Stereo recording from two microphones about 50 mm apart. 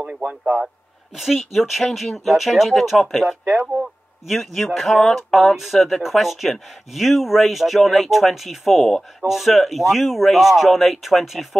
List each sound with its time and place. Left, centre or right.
0.0 s a sound: right
1.1 s speech: centre
3.6 s speech: centre
4.3 s speech: centre